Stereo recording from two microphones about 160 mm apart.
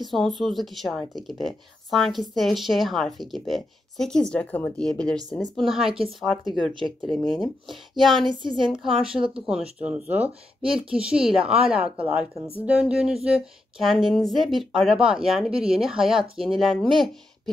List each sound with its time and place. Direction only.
0.0 s speech: centre (ahead or behind)
8.3 s a woman's voice: 30° right (ahead or behind)
9.5 s speech: 5° right (ahead or behind)